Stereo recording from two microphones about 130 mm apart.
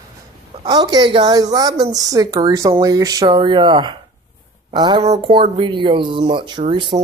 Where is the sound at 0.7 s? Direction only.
30° right (ahead or behind).